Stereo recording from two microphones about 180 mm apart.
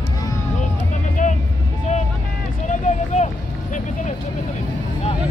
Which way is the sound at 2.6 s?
40° left (ahead or behind).